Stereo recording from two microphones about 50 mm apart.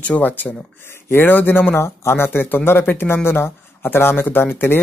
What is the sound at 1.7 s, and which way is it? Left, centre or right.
A man's voice, left.